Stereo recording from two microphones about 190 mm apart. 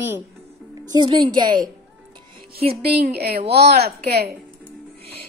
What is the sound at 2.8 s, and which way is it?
Speech, 55° right (ahead or behind).